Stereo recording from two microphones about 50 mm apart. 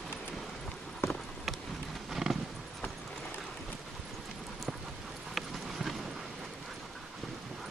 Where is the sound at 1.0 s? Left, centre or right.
Left.